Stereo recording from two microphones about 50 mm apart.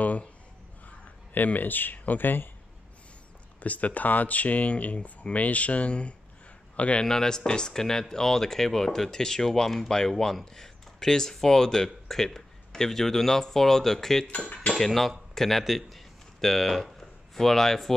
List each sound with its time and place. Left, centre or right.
0.0 s a sound: left
0.8 s speech: left
3.6 s speech: left
7.1 s speech: centre